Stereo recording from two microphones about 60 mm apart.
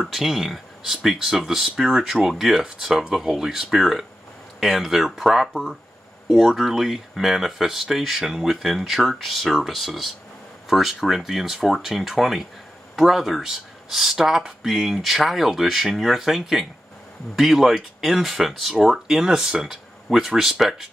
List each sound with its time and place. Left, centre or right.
0.0 s speech: centre